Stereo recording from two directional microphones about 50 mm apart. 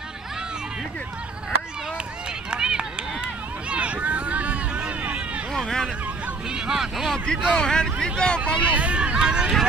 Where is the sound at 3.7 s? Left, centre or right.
Right.